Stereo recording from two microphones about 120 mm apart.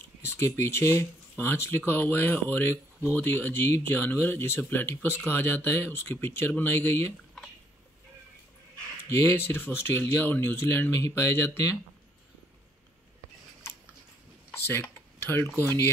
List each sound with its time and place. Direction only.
0.3 s speech: 20° left (ahead or behind)
9.2 s speech: 20° left (ahead or behind)
14.5 s a sound: 20° left (ahead or behind)
15.6 s speech: 20° left (ahead or behind)